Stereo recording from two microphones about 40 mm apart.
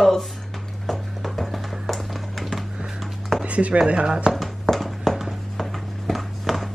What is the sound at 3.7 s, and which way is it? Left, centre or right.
Speech, right.